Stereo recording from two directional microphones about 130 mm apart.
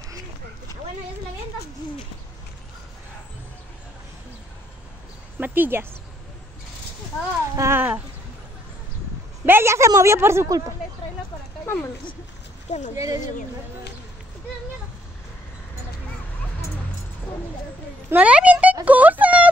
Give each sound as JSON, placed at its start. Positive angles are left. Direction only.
{"t": 5.4, "sound": "speech", "side_deg": -15}
{"t": 7.5, "sound": "a sound", "side_deg": -20}
{"t": 9.5, "sound": "a woman's voice", "side_deg": -20}
{"t": 11.6, "sound": "speech", "side_deg": 20}
{"t": 12.9, "sound": "a woman's voice", "side_deg": -25}
{"t": 18.1, "sound": "speech", "side_deg": -10}
{"t": 18.9, "sound": "a sound", "side_deg": -10}